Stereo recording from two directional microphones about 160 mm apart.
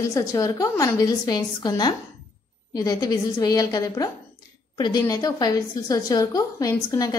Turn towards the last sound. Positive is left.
turn(degrees=20)  # may be behind; listen again after turning